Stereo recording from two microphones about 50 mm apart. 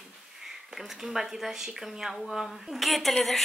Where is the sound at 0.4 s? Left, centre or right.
Centre.